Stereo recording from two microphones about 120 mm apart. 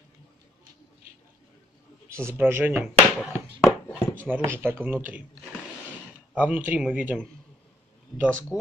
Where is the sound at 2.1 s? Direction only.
20° right (ahead or behind).